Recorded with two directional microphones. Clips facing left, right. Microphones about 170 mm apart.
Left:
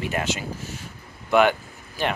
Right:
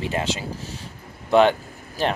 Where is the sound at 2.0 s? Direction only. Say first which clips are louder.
Right 2 dB; 40° right (ahead or behind).